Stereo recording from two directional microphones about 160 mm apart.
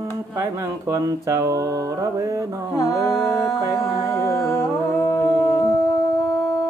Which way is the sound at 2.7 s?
20° left (ahead or behind).